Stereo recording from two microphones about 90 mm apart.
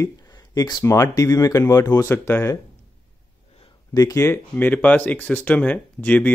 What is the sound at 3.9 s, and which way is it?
Speech, 40° left (ahead or behind).